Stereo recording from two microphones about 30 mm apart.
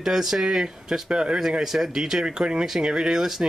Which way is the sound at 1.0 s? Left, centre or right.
Right.